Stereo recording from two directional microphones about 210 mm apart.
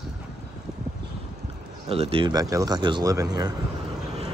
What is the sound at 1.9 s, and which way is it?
A man's voice, 25° right (ahead or behind).